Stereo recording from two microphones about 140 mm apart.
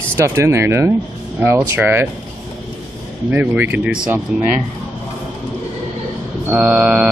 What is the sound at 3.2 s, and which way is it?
Speech, 10° right (ahead or behind).